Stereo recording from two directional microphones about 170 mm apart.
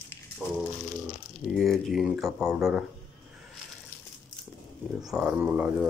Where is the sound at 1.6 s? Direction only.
Centre (ahead or behind).